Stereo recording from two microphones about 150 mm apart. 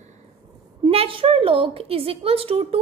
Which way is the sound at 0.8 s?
40° right (ahead or behind).